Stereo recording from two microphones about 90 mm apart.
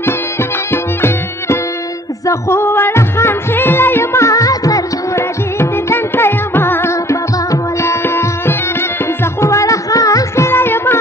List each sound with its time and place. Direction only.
0.0 s music: 25° left (ahead or behind)